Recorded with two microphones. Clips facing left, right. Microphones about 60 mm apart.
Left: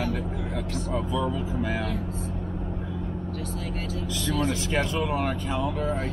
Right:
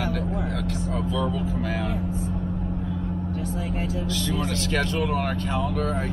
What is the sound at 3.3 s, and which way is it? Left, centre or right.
Vehicle, centre.